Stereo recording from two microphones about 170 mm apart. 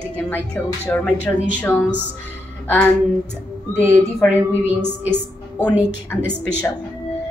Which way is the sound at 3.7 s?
15° right (ahead or behind).